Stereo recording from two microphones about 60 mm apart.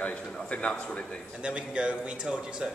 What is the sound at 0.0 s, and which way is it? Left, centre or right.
A man's voice, left.